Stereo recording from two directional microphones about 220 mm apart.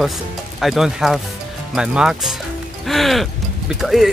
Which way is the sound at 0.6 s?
Centre (ahead or behind).